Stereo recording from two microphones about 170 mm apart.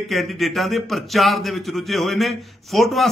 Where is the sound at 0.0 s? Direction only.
Centre (ahead or behind).